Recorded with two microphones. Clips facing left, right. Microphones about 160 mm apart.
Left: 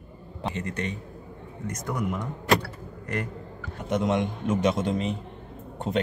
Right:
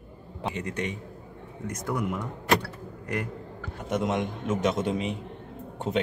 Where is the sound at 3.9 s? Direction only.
Centre (ahead or behind).